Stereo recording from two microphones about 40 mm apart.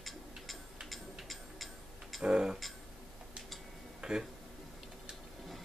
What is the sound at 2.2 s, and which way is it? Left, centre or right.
Speech, centre.